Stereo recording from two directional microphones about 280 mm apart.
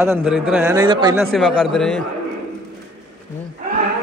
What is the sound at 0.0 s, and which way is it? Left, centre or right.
A man's voice, centre.